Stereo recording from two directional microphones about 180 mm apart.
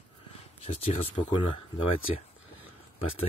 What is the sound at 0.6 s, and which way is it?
Speech, 35° left (ahead or behind).